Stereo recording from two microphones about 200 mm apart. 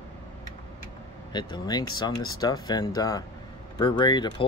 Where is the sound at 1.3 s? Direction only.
20° left (ahead or behind).